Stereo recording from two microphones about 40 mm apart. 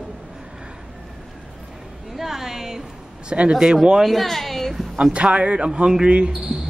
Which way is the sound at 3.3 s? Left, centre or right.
Right.